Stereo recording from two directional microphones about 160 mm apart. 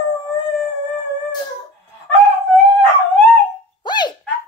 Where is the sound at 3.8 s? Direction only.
25° left (ahead or behind).